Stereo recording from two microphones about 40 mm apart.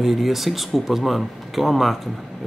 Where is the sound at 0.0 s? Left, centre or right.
Centre.